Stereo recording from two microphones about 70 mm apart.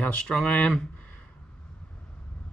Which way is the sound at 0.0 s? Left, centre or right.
Centre.